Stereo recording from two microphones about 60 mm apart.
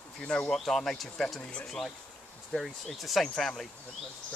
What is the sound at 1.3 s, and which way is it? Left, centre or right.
Speech, centre.